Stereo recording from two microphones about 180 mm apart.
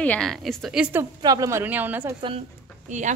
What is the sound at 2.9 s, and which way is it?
Speech, 45° right (ahead or behind).